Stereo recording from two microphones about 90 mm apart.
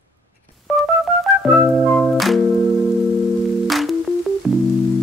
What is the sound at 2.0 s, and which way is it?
Music, centre (ahead or behind).